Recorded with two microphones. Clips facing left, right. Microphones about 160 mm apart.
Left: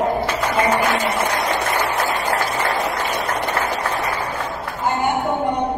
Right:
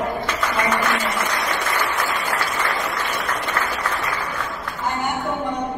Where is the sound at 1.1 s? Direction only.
30° left (ahead or behind).